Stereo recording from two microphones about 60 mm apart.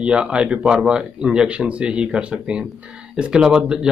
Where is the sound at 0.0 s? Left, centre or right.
Centre.